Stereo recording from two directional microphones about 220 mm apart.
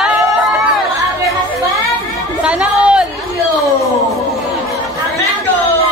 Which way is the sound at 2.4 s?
5° right (ahead or behind).